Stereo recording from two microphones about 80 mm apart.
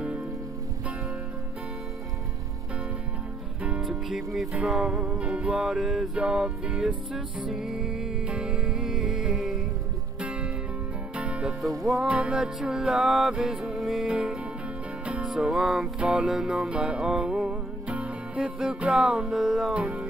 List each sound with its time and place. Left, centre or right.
3.6 s music: centre
10.2 s music: centre
11.8 s music: centre
12.1 s music: centre
19.8 s music: centre